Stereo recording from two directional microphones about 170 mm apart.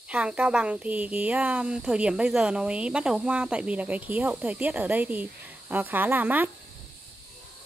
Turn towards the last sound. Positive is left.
turn(degrees=-10)  # may be behind; listen again after turning